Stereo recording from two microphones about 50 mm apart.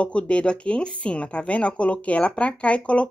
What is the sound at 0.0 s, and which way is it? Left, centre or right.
A woman's voice, left.